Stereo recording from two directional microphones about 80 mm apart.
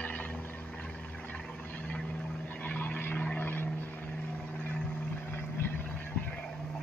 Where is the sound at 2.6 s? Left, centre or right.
Centre.